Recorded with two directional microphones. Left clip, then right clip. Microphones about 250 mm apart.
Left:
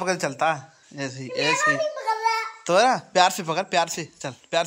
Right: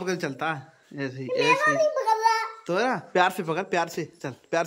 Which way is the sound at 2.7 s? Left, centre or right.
Centre.